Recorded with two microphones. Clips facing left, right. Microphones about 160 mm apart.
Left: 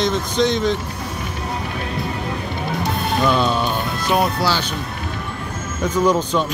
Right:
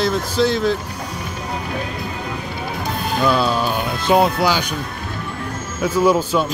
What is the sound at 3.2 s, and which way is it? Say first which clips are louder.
Speech: right 1 dB; 5° right (ahead or behind).